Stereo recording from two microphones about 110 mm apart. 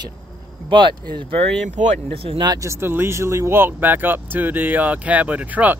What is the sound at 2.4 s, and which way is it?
Speech, 30° right (ahead or behind).